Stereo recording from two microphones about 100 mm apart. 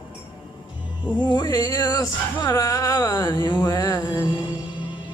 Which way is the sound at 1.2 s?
45° left (ahead or behind).